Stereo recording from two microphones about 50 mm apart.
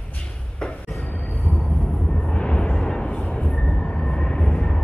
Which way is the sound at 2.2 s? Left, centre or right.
Centre.